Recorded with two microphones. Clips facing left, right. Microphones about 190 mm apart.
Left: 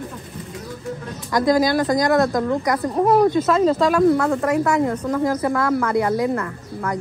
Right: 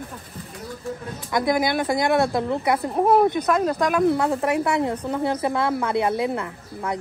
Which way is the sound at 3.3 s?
20° right (ahead or behind).